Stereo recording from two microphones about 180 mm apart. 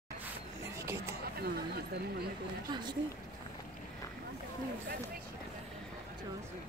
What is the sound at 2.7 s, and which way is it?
Speech, 25° right (ahead or behind).